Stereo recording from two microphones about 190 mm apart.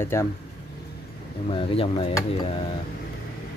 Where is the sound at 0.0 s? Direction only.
15° left (ahead or behind).